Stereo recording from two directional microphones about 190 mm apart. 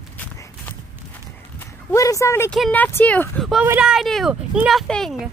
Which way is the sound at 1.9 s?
15° left (ahead or behind).